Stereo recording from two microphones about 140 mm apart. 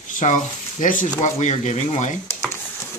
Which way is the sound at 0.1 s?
65° left (ahead or behind).